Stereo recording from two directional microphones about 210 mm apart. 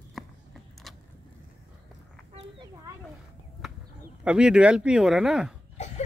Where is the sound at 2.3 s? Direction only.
25° right (ahead or behind).